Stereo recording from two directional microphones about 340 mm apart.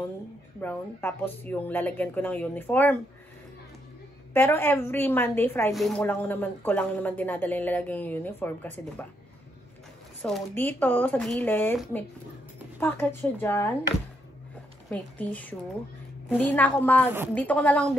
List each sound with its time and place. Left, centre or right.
0.6 s a woman's voice: centre
4.3 s a woman's voice: centre
10.2 s a woman's voice: centre
14.9 s a woman's voice: centre